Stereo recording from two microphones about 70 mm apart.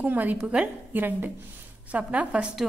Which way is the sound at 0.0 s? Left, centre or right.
Right.